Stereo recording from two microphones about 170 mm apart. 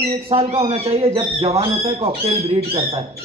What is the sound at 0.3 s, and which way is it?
A man's voice, 35° right (ahead or behind).